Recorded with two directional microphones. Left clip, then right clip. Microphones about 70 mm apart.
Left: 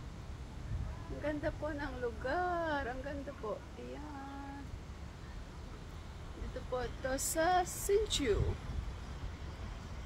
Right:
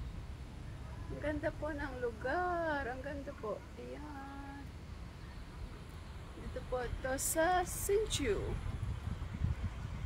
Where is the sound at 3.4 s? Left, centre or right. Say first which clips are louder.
Even; right.